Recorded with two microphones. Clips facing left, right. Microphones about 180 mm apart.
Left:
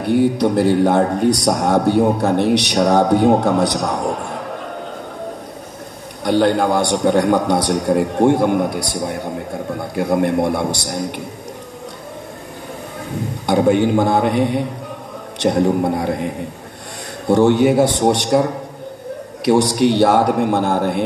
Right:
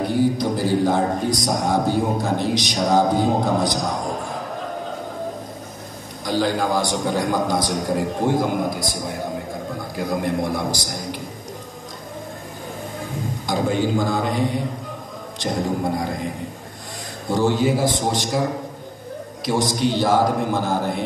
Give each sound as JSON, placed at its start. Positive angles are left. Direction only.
{"t": 0.0, "sound": "a man's voice", "side_deg": 65}
{"t": 6.2, "sound": "a man's voice", "side_deg": 65}
{"t": 13.5, "sound": "a man's voice", "side_deg": 65}
{"t": 17.3, "sound": "a man's voice", "side_deg": 65}